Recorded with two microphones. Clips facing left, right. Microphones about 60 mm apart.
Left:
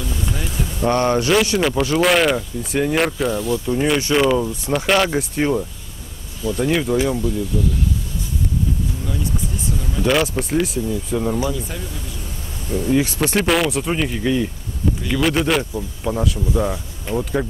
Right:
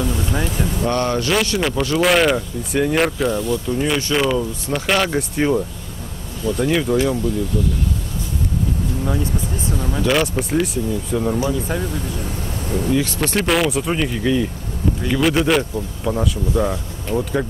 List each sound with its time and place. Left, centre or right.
0.8 s speech: centre
1.3 s speech: centre
9.8 s speech: right
10.0 s speech: centre
11.3 s speech: right
12.6 s speech: right
12.9 s speech: centre